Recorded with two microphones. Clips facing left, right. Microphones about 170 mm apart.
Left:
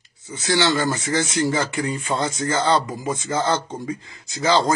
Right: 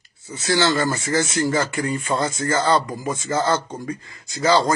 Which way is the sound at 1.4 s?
Centre (ahead or behind).